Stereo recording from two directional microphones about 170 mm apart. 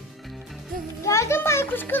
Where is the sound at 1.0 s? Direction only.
15° left (ahead or behind).